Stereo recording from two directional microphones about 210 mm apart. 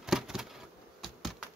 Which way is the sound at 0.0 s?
Centre (ahead or behind).